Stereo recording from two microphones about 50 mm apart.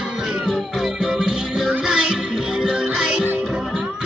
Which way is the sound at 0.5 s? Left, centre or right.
Centre.